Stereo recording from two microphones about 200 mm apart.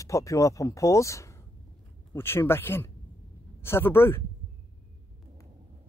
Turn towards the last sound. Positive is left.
turn(degrees=10)  # may be behind; listen again after turning